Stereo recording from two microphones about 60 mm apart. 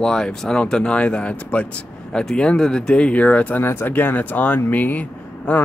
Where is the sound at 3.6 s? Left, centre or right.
Left.